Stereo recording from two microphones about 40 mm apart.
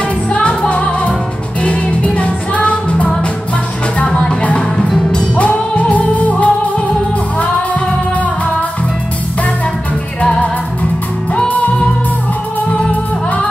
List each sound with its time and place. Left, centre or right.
0.3 s music: left